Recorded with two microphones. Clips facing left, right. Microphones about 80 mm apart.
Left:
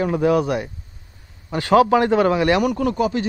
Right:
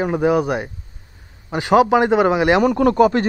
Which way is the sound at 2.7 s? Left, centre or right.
Right.